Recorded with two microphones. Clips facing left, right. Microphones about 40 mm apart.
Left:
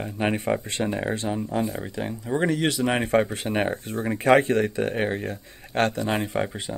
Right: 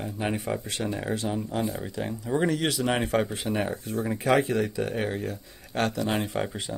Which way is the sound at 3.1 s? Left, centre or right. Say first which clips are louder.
Left 4 dB; left.